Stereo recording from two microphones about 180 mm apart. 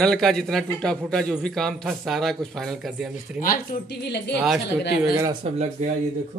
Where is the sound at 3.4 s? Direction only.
50° left (ahead or behind).